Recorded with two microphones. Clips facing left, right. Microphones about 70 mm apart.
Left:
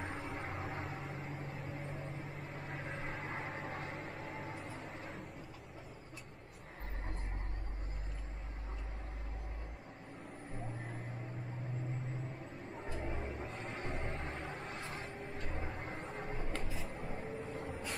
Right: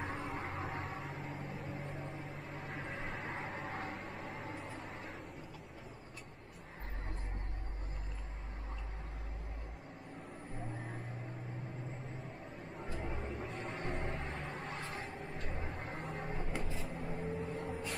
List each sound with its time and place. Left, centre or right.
0.0 s vehicle: centre
3.7 s vehicle: right
4.0 s a sound: centre
13.0 s a sound: centre
13.7 s vehicle: centre
14.1 s vehicle: left
15.4 s vehicle: centre